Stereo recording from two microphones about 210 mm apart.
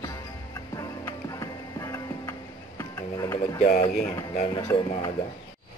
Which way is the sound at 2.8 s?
15° left (ahead or behind).